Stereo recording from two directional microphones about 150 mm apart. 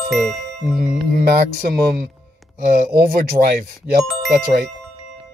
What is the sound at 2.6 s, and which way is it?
Music, 70° right (ahead or behind).